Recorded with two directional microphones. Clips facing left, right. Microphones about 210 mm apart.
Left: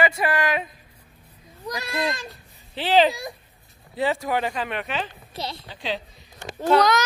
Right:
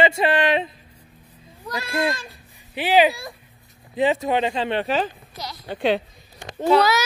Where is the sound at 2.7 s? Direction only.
10° right (ahead or behind).